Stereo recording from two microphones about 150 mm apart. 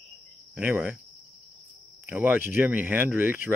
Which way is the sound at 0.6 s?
10° right (ahead or behind).